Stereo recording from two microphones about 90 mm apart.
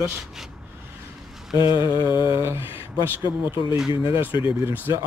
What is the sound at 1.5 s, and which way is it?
Mantra, 65° left (ahead or behind).